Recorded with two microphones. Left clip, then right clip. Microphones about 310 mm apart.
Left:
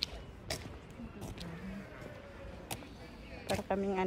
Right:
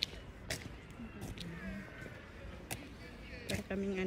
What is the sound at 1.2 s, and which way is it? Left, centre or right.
Vehicle, centre.